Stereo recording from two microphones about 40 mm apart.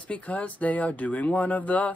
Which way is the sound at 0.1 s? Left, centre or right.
Left.